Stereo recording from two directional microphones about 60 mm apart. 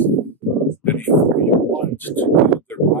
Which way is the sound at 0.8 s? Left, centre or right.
Left.